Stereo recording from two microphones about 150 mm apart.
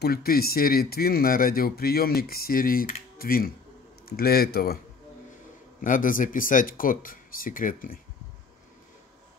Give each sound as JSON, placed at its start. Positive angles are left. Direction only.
{"t": 0.0, "sound": "speech", "side_deg": 90}
{"t": 4.2, "sound": "a man's voice", "side_deg": 90}
{"t": 5.8, "sound": "speech", "side_deg": 65}